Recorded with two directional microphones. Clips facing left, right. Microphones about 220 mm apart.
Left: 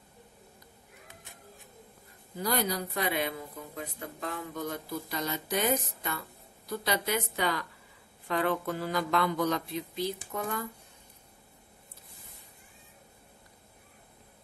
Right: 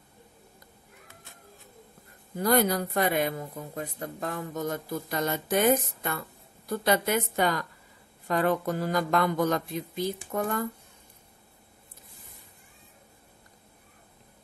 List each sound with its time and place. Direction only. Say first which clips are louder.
2.3 s speech: right 7 dB; 55° right (ahead or behind)